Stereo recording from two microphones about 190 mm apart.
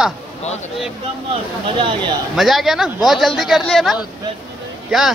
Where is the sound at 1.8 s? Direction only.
25° right (ahead or behind).